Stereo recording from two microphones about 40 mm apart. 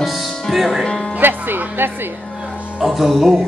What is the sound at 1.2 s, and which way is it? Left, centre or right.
Speech, right.